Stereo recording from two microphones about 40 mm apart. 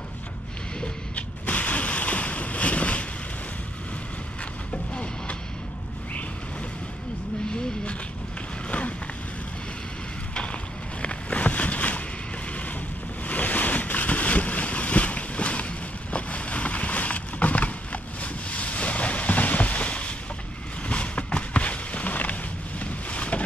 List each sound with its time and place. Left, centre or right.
1.1 s boat: left
4.9 s vehicle: left
8.6 s a sound: left
10.3 s boat: left
13.3 s boat: left
20.8 s a sound: left